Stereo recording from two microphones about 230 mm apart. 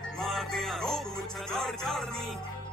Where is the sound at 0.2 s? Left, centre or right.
Centre.